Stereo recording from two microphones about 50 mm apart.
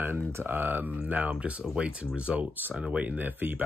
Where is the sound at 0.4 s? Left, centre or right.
Right.